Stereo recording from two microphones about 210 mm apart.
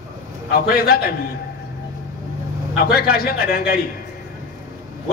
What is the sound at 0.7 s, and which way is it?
Speech, 45° left (ahead or behind).